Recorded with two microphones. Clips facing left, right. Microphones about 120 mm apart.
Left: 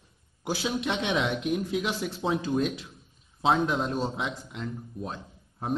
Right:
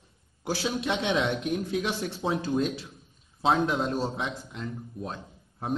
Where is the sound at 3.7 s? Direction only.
15° left (ahead or behind).